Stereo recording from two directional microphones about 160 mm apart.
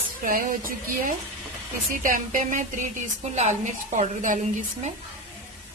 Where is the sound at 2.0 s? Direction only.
55° right (ahead or behind).